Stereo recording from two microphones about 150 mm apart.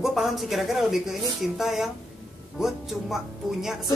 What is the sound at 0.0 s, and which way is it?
A woman's voice, centre (ahead or behind).